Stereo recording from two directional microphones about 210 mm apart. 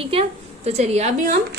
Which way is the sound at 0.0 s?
25° right (ahead or behind).